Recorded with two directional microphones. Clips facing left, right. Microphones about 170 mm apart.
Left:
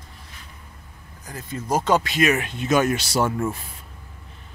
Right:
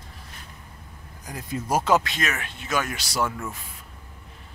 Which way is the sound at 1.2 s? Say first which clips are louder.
Even; 10° right (ahead or behind).